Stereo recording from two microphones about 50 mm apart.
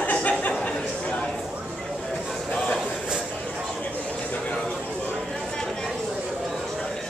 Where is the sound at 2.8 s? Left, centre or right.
Centre.